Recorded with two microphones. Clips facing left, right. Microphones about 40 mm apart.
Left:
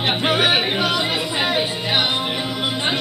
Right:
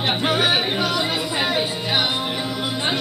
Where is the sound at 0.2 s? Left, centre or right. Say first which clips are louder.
Left 2 dB; left.